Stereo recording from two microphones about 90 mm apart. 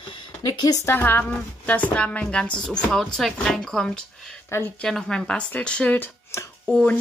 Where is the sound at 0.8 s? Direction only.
25° left (ahead or behind); by 4.0 s 10° left (ahead or behind).